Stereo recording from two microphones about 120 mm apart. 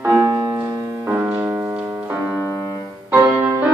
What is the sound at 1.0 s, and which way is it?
Music, 15° right (ahead or behind).